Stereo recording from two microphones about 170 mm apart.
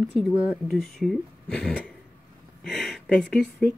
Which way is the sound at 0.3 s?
15° left (ahead or behind).